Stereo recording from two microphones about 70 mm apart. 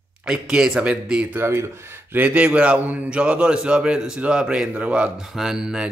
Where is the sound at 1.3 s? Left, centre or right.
Right.